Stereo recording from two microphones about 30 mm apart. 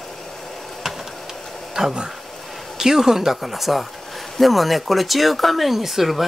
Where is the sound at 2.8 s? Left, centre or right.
Centre.